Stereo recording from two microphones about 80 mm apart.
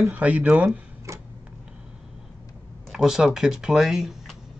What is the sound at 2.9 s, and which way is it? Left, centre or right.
Speech, centre.